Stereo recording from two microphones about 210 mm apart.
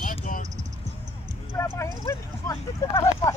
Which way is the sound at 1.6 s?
15° left (ahead or behind).